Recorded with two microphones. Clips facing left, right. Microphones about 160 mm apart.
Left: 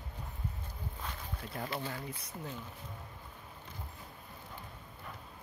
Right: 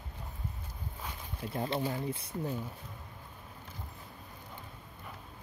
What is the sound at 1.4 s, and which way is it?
Speech, 25° right (ahead or behind).